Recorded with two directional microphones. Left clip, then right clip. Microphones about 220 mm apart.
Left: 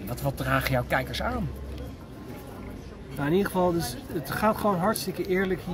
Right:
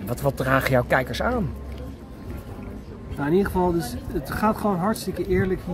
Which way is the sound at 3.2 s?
15° left (ahead or behind).